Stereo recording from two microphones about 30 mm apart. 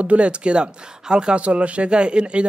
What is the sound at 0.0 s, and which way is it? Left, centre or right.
Speech, right.